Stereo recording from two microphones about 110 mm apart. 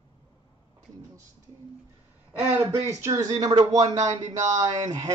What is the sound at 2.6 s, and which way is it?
Speech, 30° right (ahead or behind).